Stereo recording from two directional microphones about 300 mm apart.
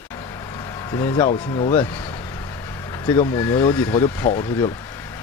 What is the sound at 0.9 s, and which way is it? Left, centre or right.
Speech, centre.